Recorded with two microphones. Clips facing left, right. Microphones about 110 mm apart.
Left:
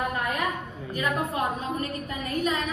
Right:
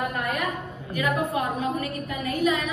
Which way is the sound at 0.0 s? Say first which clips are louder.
Even; 25° left (ahead or behind).